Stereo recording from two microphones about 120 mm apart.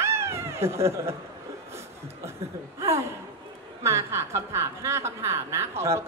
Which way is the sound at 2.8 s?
25° right (ahead or behind).